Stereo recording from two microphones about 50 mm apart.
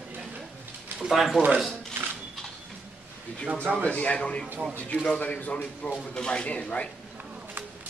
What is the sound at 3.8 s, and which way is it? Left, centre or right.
Speech, left.